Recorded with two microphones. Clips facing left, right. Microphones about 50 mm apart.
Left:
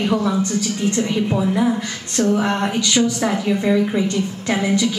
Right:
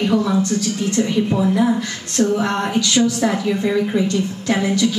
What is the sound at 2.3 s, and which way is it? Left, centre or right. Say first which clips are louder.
Speech: even; left.